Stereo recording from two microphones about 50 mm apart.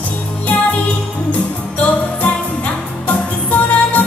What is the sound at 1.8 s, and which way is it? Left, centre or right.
Music, left.